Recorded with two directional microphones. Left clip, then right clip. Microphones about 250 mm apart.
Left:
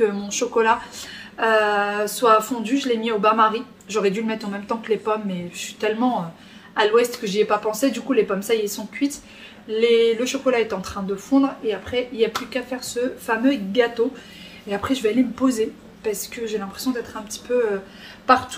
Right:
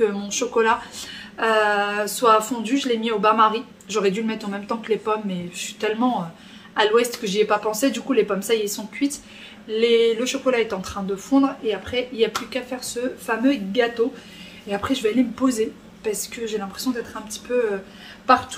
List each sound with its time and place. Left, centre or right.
0.0 s a woman's voice: centre